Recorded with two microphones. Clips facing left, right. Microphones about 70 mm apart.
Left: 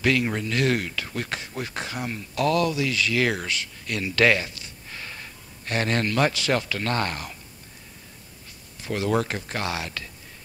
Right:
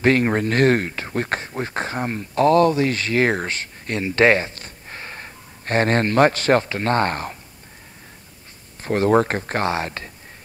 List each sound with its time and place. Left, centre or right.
0.0 s speech: right
8.8 s speech: right